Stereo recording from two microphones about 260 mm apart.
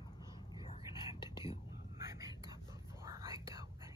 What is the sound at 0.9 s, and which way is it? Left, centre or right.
Whispering, centre.